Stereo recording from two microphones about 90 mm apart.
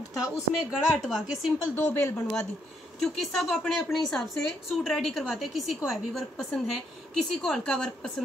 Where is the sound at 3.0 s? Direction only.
Centre (ahead or behind).